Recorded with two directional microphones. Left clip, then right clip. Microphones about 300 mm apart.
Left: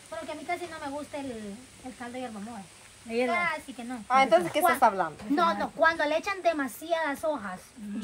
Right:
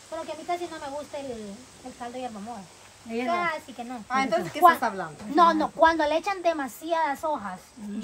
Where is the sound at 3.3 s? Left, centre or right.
Centre.